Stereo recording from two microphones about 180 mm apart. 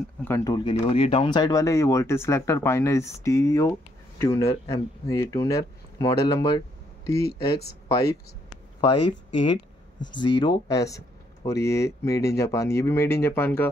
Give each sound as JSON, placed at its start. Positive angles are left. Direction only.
{"t": 0.2, "sound": "speech", "side_deg": 15}
{"t": 0.8, "sound": "speech", "side_deg": 35}
{"t": 7.2, "sound": "speech", "side_deg": 60}
{"t": 7.9, "sound": "a sound", "side_deg": 20}
{"t": 10.0, "sound": "speech", "side_deg": 25}